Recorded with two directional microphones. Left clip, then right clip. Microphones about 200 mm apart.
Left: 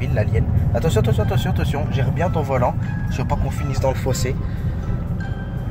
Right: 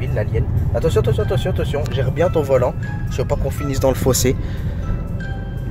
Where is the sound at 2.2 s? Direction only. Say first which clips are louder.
Right 5 dB; 25° right (ahead or behind).